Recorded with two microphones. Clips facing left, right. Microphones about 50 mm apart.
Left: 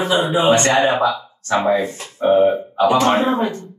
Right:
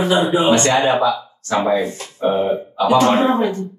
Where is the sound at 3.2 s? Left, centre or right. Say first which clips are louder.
Right 2 dB; right.